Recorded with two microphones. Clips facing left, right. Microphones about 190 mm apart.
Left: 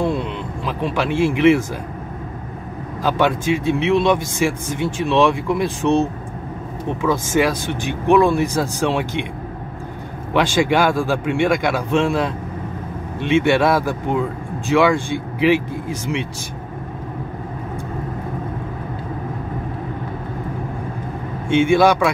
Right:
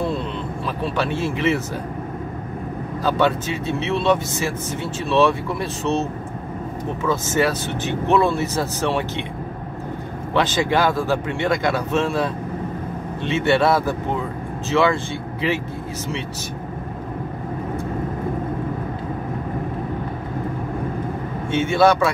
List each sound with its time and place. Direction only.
0.7 s speech: 15° left (ahead or behind)
3.0 s speech: 10° left (ahead or behind)
10.3 s speech: 10° left (ahead or behind)
13.3 s speech: 10° left (ahead or behind)
21.5 s speech: 15° left (ahead or behind)